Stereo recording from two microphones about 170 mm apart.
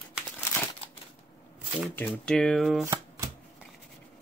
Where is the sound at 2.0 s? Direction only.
5° left (ahead or behind).